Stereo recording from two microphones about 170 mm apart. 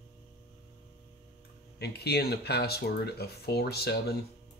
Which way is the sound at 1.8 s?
70° left (ahead or behind).